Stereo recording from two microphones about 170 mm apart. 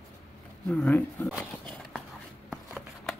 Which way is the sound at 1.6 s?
5° left (ahead or behind).